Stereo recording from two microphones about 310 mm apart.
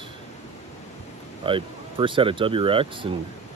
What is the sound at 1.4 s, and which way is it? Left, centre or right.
Speech, centre.